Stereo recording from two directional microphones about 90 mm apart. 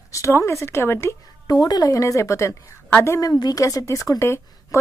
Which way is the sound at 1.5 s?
50° left (ahead or behind).